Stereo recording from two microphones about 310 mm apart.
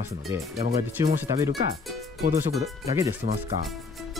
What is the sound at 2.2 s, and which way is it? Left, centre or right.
Speech, right.